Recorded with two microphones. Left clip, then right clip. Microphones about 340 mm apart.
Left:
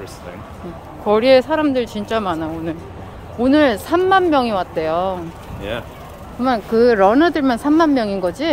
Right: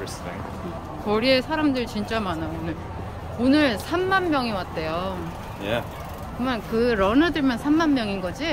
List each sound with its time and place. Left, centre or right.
1.0 s speech: centre
6.4 s speech: centre